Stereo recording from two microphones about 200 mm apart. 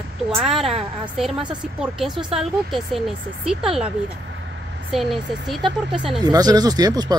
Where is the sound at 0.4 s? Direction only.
Centre (ahead or behind).